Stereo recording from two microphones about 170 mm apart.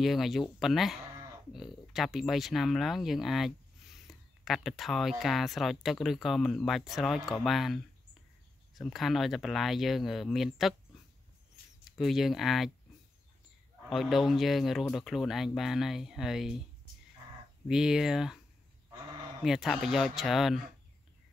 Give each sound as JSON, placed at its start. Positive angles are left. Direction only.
{"t": 0.0, "sound": "speech", "side_deg": 0}
{"t": 12.0, "sound": "speech", "side_deg": 0}
{"t": 13.8, "sound": "speech", "side_deg": 0}
{"t": 17.6, "sound": "speech", "side_deg": -5}
{"t": 19.4, "sound": "speech", "side_deg": 0}